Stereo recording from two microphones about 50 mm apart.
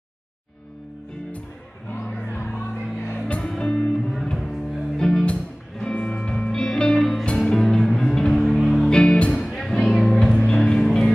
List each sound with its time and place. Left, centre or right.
2.3 s music: left
3.2 s music: left
3.4 s music: centre